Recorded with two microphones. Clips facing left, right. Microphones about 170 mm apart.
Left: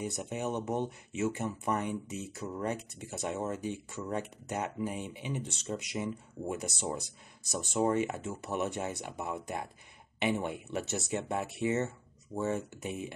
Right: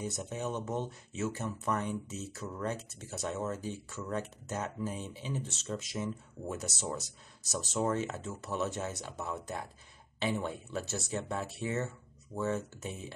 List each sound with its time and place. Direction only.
0.2 s speech: 15° left (ahead or behind)
7.7 s speech: 15° left (ahead or behind)